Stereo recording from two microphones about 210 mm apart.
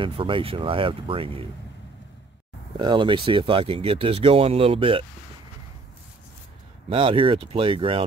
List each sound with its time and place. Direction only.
0.0 s speech: 25° right (ahead or behind)
2.8 s speech: 20° right (ahead or behind)
6.9 s speech: 25° right (ahead or behind)